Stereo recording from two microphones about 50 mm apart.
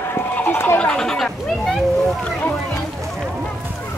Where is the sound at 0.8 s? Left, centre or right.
Left.